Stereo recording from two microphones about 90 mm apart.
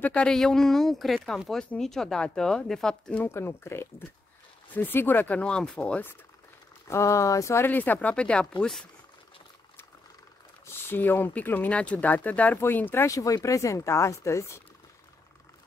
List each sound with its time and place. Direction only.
0.0 s speech: 15° left (ahead or behind)
0.3 s speech: 5° left (ahead or behind)
3.3 s speech: 30° left (ahead or behind); by 6.0 s 10° left (ahead or behind)
6.9 s speech: 35° left (ahead or behind)
7.7 s speech: 20° left (ahead or behind)
10.9 s speech: 25° left (ahead or behind)
13.0 s speech: 40° left (ahead or behind)